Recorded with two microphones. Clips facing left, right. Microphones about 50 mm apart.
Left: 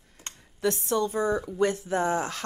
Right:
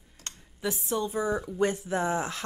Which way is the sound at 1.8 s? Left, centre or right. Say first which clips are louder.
Left 2 dB; left.